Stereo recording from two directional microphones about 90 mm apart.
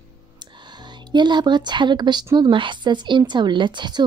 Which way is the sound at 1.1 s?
55° right (ahead or behind).